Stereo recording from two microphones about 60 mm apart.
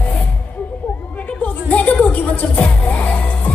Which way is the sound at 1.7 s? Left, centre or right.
Left.